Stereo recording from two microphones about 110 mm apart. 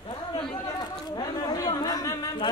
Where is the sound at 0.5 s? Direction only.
40° left (ahead or behind).